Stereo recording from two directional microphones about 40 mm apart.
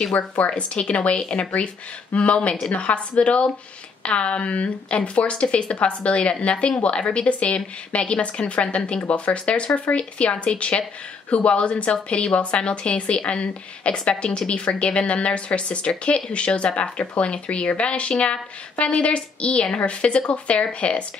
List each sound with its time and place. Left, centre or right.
0.2 s speech: left
0.6 s a woman's voice: left
17.0 s speech: left
17.3 s a woman's voice: left